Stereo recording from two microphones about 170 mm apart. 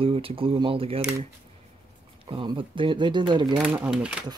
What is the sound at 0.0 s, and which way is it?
Speech, 35° right (ahead or behind).